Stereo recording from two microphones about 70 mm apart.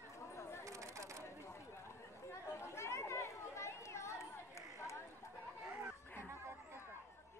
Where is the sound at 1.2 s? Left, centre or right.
Left.